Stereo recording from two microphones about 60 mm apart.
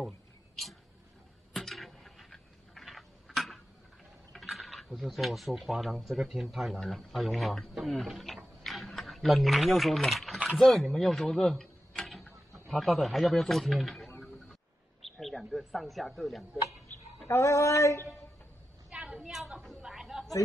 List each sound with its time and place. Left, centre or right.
1.5 s a sound: centre
4.3 s speech: centre
8.6 s typing: centre
10.6 s speech: centre
12.0 s tick-tock: centre
12.7 s speech: centre
17.3 s female singing: left
18.9 s a sound: centre
19.8 s chatter: centre